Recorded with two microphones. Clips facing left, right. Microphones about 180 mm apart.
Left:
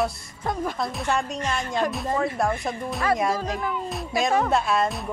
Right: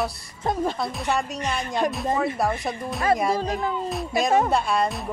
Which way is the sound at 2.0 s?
Centre (ahead or behind).